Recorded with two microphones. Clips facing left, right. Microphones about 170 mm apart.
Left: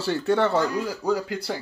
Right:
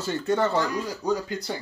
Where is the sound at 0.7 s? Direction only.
10° left (ahead or behind).